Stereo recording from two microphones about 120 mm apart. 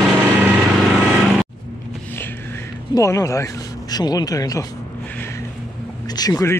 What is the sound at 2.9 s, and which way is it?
Speech, 25° left (ahead or behind).